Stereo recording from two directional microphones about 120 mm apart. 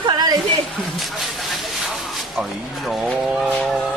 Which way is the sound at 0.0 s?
35° right (ahead or behind).